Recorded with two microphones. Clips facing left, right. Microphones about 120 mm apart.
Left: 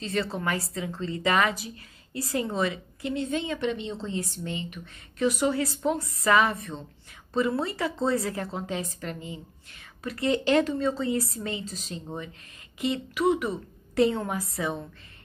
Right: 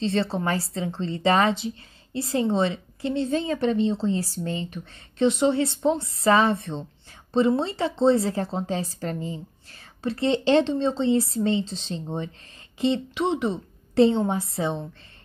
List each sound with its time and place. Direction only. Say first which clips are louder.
0.0 s a woman's voice: right 5 dB; 30° right (ahead or behind)